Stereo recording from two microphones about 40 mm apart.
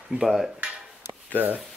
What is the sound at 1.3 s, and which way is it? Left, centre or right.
Speech, right.